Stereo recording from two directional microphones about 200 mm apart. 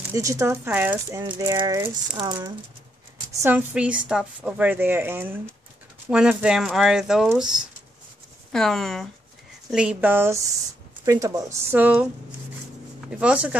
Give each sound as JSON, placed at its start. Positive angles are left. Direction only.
{"t": 0.1, "sound": "a woman's voice", "side_deg": -15}
{"t": 1.3, "sound": "speech", "side_deg": -20}
{"t": 3.4, "sound": "a woman's voice", "side_deg": -5}
{"t": 13.2, "sound": "a woman's voice", "side_deg": -5}